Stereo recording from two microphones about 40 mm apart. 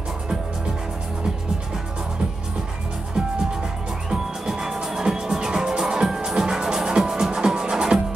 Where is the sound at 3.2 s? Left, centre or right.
Centre.